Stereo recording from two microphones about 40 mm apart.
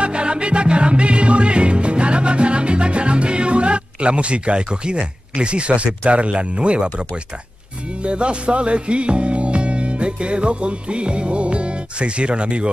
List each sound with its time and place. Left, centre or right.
0.0 s music: right